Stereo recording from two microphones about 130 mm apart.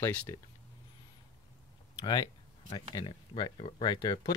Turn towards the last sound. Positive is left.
turn(degrees=35)  # may be behind; listen again after turning